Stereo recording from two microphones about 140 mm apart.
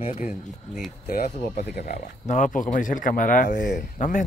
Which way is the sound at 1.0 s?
90° left.